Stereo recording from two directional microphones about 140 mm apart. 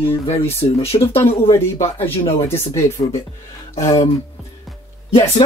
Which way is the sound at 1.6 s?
20° left (ahead or behind).